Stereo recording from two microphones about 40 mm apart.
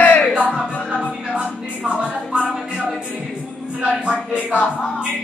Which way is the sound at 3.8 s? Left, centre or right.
Right.